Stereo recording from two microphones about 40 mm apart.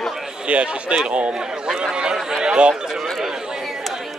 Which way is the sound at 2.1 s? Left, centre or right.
Centre.